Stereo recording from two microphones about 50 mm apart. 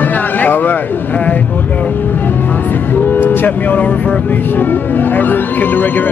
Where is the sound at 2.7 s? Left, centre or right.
Left.